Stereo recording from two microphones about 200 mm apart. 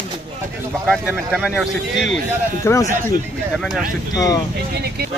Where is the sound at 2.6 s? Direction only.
15° left (ahead or behind).